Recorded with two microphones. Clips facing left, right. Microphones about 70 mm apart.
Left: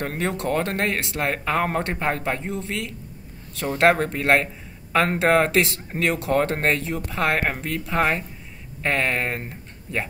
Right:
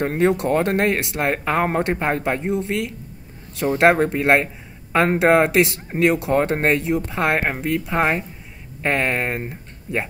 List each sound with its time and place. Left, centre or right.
0.0 s speech: right